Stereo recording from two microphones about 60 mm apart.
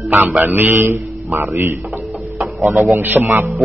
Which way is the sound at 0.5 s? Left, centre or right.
Right.